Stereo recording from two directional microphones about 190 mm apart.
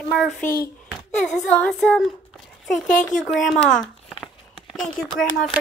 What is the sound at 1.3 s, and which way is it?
Child singing, 5° left (ahead or behind).